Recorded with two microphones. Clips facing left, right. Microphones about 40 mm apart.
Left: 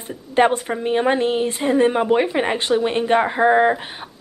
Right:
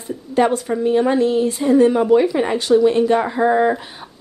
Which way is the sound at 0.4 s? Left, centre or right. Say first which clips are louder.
Even; left.